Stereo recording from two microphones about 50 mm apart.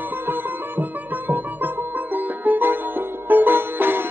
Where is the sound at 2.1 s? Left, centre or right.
Right.